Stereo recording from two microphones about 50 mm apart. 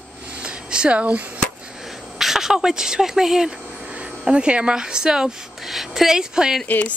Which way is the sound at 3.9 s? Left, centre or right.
Right.